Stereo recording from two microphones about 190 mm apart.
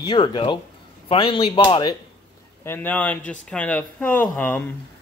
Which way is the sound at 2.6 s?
10° left (ahead or behind).